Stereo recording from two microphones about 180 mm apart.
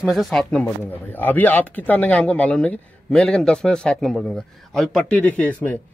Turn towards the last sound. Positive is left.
turn(degrees=10)  # may be behind; listen again after turning